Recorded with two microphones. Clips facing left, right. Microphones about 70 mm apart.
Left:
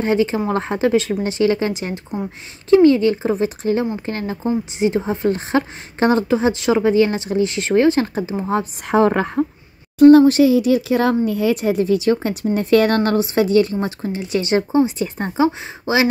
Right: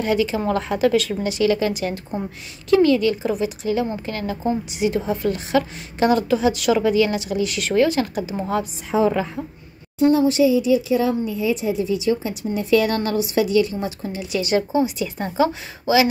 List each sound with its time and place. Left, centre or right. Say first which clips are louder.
0.0 s a woman's voice: left 2 dB; left
8.8 s a woman's voice: left 4 dB; left